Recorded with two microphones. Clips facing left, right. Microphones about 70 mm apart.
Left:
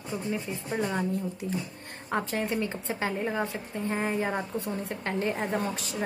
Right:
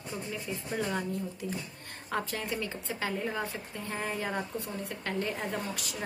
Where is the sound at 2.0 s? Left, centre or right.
Left.